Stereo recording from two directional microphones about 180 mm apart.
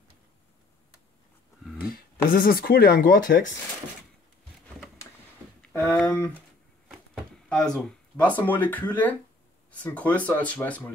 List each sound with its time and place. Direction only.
1.8 s speech: 60° left (ahead or behind)
5.6 s a sound: 5° left (ahead or behind)
7.2 s speech: 5° left (ahead or behind)